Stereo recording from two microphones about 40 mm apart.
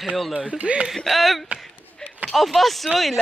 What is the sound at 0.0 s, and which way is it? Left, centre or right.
Speech, centre.